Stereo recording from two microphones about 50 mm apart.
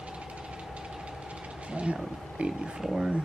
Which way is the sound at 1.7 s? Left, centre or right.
Right.